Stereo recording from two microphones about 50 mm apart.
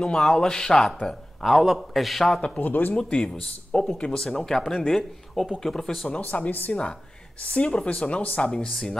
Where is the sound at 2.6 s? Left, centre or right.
Left.